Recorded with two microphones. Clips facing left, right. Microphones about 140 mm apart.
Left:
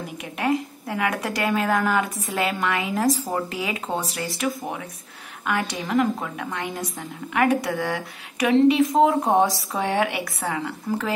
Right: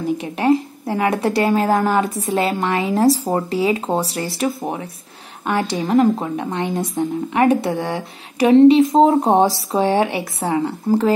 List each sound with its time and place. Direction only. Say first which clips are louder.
0.2 s a woman's voice: right 4 dB; 30° right (ahead or behind)